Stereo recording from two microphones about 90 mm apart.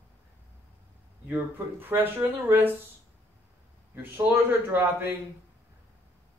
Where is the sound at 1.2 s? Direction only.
25° right (ahead or behind).